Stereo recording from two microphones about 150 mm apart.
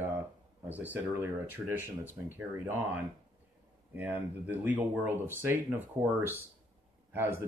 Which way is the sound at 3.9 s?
10° right (ahead or behind).